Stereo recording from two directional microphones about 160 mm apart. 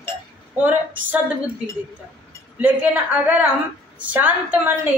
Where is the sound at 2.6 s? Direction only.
10° right (ahead or behind).